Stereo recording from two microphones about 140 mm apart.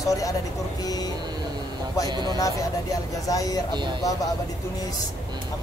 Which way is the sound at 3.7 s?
35° right (ahead or behind).